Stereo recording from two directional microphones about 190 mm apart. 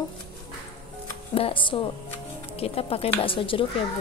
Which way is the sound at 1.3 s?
30° left (ahead or behind).